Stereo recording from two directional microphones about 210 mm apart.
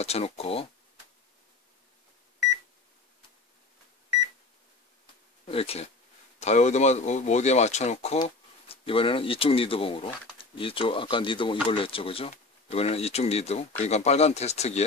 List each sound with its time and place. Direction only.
0.0 s speech: 30° left (ahead or behind)
5.4 s speech: 30° left (ahead or behind)